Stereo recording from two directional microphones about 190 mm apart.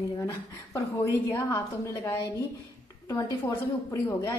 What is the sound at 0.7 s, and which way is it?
Speech, 15° left (ahead or behind).